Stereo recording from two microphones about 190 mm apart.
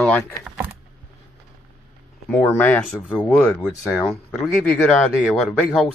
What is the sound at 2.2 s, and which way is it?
Speech, 10° left (ahead or behind).